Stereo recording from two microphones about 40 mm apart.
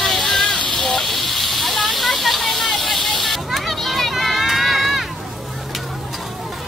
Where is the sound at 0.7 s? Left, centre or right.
Centre.